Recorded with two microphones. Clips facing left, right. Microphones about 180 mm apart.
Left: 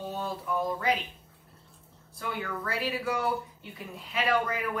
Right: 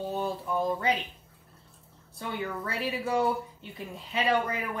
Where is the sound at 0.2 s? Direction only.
25° right (ahead or behind).